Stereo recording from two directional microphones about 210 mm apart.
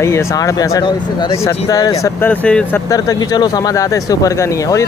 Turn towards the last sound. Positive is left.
turn(degrees=15)  # may be behind; listen again after turning